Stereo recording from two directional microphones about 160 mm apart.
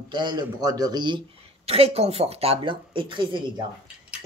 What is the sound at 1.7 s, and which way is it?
Speech, 40° right (ahead or behind).